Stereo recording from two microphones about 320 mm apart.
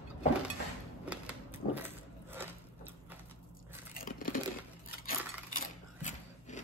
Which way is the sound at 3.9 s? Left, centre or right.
Left.